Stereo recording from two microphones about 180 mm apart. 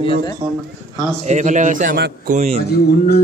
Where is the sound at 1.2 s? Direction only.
40° right (ahead or behind).